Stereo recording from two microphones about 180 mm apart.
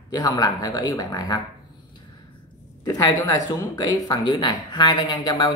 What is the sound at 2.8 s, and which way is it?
Speech, 20° left (ahead or behind).